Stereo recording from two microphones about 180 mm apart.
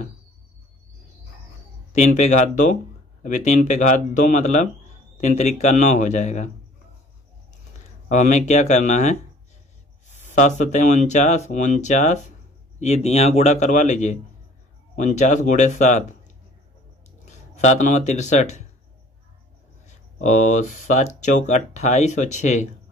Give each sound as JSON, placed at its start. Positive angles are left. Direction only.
{"t": 1.9, "sound": "speech", "side_deg": 40}
{"t": 8.1, "sound": "speech", "side_deg": 45}
{"t": 17.2, "sound": "speech", "side_deg": 40}
{"t": 20.2, "sound": "speech", "side_deg": 45}